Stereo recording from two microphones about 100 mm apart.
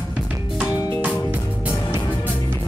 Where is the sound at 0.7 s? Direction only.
35° left (ahead or behind).